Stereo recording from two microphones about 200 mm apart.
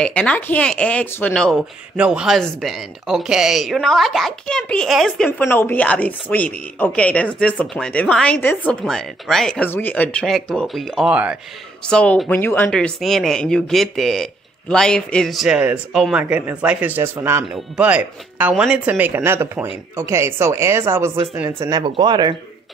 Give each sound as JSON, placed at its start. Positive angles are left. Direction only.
{"t": 0.0, "sound": "speech", "side_deg": 5}
{"t": 11.8, "sound": "speech", "side_deg": 5}